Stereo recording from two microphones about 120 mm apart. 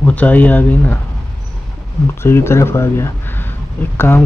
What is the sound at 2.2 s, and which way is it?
Speech, 20° left (ahead or behind).